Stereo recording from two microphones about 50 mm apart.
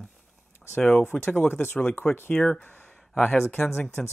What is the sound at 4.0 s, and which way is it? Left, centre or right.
Speech, centre.